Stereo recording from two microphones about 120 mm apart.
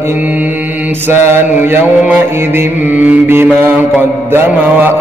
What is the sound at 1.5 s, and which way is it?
Mantra, 15° right (ahead or behind).